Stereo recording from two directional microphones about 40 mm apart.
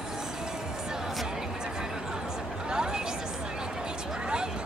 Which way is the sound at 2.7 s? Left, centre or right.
Centre.